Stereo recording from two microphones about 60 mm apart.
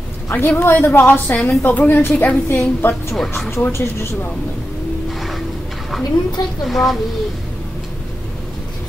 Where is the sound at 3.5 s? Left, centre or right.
Left.